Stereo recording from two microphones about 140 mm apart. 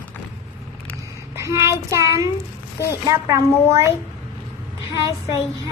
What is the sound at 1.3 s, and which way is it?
Child singing, 20° right (ahead or behind).